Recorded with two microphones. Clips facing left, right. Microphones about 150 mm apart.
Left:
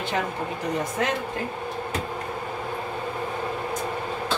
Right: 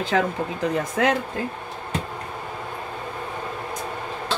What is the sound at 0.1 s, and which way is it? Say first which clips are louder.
Speech: right 6 dB; 90° right.